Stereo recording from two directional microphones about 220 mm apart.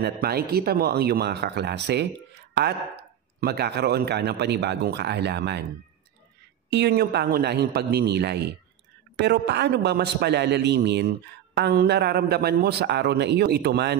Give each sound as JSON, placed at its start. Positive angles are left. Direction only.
{"t": 0.0, "sound": "a man's voice", "side_deg": -45}
{"t": 3.3, "sound": "a man's voice", "side_deg": -45}
{"t": 6.7, "sound": "a man's voice", "side_deg": -45}